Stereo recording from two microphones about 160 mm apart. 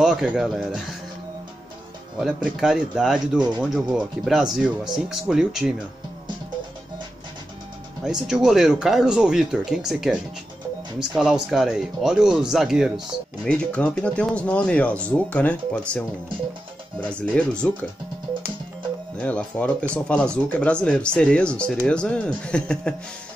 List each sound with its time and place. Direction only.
0.0 s speech: 5° right (ahead or behind)
2.1 s speech: 5° right (ahead or behind)
3.3 s speech: 25° right (ahead or behind)
3.7 s speech: centre (ahead or behind)
8.0 s speech: centre (ahead or behind)
13.5 s speech: 5° left (ahead or behind)
17.0 s speech: 5° left (ahead or behind)
19.1 s speech: 5° left (ahead or behind)